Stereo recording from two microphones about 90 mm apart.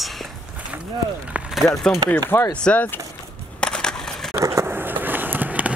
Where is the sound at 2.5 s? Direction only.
15° left (ahead or behind).